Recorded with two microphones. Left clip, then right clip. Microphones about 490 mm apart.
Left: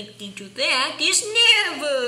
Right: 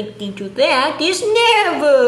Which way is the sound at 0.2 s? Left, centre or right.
Left.